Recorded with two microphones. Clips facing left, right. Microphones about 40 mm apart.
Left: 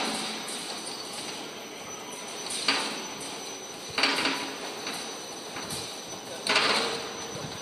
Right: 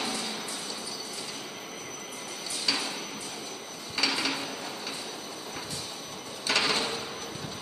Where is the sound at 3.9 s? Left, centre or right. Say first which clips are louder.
Left 2 dB; centre.